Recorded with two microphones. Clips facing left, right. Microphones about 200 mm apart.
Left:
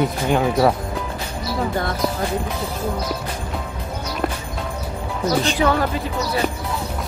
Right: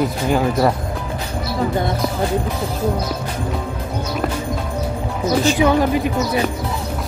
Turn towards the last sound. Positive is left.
turn(degrees=-15)  # may be behind; listen again after turning